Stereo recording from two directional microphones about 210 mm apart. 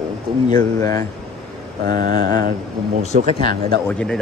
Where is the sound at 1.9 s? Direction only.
40° right (ahead or behind).